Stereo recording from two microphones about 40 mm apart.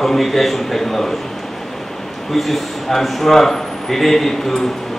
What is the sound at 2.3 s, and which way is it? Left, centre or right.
A man's voice, centre.